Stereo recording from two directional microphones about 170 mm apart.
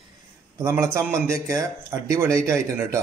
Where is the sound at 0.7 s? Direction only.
10° right (ahead or behind).